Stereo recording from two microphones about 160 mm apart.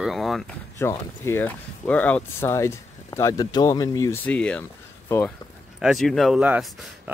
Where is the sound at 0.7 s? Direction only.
15° left (ahead or behind).